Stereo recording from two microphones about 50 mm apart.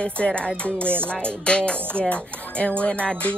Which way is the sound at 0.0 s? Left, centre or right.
Left.